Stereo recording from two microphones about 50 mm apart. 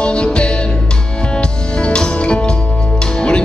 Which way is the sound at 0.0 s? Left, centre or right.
Left.